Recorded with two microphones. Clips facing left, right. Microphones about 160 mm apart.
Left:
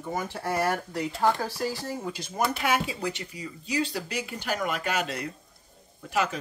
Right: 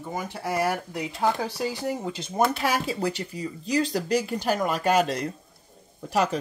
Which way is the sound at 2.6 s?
35° right (ahead or behind).